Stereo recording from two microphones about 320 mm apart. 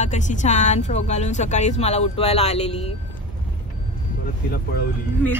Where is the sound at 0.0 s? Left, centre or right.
Left.